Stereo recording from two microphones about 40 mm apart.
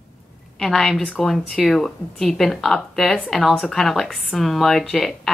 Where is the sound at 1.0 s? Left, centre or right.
Left.